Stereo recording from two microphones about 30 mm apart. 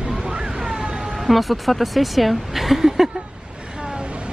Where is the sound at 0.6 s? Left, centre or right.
Centre.